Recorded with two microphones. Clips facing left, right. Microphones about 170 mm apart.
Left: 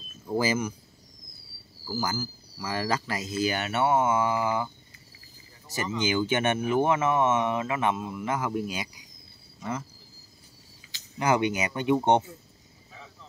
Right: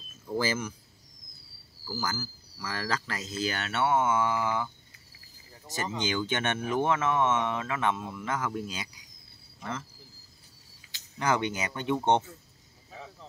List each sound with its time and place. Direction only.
0.4 s speech: 15° left (ahead or behind)
1.9 s speech: 10° left (ahead or behind)
5.9 s speech: 10° left (ahead or behind)
11.1 s speech: 10° left (ahead or behind)